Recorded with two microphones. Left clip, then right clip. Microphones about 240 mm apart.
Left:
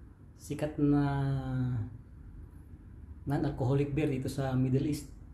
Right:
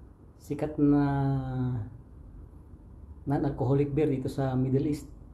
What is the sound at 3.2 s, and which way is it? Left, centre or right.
A man's voice, centre.